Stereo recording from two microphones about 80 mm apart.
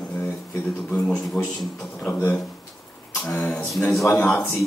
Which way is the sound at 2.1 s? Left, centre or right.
Left.